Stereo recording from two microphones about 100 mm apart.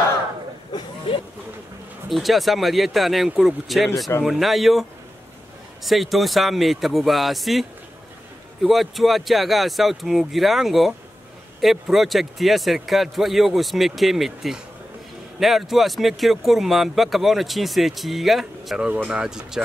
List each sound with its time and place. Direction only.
1.1 s a sound: 60° left (ahead or behind)
2.0 s speech: centre (ahead or behind)
5.9 s speech: centre (ahead or behind)
8.6 s speech: centre (ahead or behind)